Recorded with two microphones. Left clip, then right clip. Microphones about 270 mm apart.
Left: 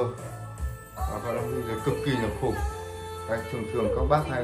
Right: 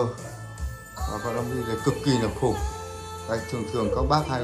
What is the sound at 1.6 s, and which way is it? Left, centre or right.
Speech, centre.